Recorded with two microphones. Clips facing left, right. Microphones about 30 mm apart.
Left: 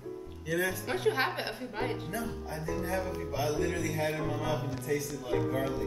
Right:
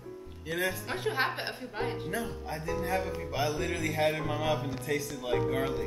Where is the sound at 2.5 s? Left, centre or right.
Right.